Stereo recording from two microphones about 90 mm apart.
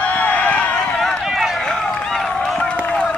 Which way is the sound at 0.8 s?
5° left (ahead or behind).